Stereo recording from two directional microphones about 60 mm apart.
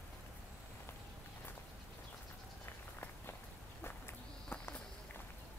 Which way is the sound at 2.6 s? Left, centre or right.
Left.